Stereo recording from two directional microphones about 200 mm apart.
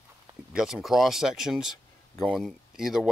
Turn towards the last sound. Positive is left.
turn(degrees=0)  # may be behind; listen again after turning